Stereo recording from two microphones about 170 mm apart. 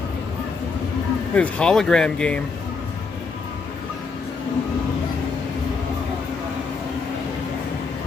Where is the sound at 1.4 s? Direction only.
5° left (ahead or behind).